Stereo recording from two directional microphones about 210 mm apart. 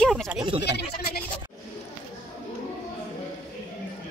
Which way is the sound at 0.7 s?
50° left (ahead or behind).